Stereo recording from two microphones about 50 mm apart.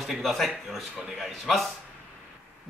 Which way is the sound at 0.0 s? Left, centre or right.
Centre.